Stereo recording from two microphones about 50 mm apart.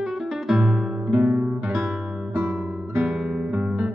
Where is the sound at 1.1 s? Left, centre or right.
Right.